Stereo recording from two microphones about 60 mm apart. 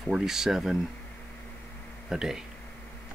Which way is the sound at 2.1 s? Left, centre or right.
Centre.